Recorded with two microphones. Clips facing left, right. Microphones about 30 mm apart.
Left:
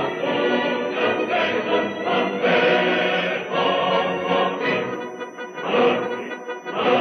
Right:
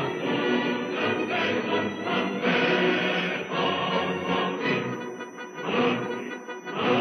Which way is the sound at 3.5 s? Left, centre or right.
Centre.